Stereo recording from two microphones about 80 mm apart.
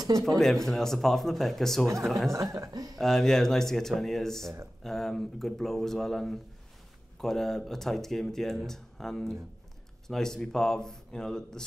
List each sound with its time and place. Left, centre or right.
0.4 s speech: centre
2.3 s speech: right
3.0 s a man's voice: centre